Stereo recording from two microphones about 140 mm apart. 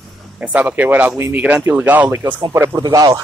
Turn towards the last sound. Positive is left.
turn(degrees=-25)  # may be behind; listen again after turning